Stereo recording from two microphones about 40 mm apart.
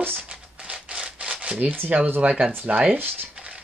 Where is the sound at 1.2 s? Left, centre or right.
Right.